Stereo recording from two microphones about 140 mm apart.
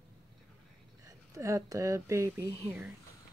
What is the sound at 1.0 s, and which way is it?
Speech, 25° right (ahead or behind).